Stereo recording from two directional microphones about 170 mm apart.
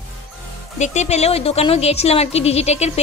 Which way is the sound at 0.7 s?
45° left (ahead or behind).